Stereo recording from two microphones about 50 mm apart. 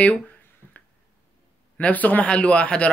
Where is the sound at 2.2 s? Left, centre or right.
Left.